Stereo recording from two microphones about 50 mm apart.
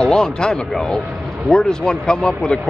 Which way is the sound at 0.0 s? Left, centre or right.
Centre.